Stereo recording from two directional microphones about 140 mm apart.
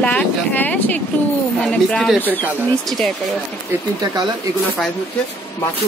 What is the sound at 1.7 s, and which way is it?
Speech, 5° left (ahead or behind).